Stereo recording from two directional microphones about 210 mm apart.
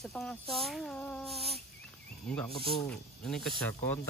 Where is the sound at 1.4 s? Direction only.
30° right (ahead or behind).